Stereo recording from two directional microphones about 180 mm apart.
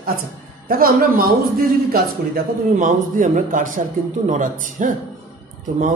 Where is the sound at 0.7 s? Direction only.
55° right (ahead or behind).